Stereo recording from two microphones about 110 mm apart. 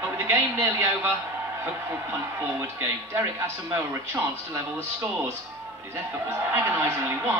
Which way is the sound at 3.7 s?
20° right (ahead or behind).